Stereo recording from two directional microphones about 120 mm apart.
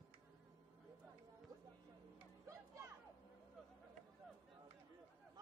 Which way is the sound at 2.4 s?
25° right (ahead or behind).